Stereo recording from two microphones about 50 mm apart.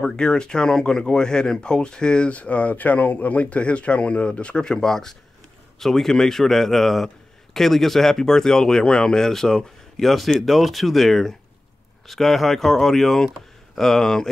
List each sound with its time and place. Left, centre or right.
0.0 s speech: centre